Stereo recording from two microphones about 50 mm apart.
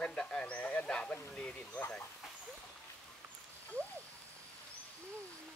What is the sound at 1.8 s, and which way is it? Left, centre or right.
Speech, left.